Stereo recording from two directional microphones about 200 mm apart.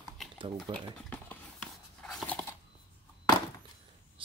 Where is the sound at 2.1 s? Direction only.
5° left (ahead or behind).